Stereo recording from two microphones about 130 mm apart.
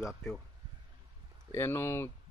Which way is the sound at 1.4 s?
20° left (ahead or behind).